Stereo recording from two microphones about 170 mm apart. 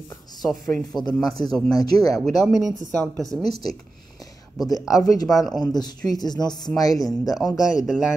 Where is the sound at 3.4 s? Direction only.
25° left (ahead or behind).